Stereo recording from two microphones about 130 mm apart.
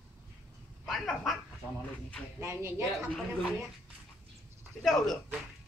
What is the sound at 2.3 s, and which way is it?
Speech, 20° right (ahead or behind).